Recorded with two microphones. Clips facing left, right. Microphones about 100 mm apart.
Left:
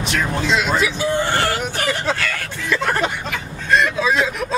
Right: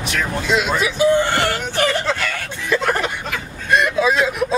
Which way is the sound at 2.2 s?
20° right (ahead or behind).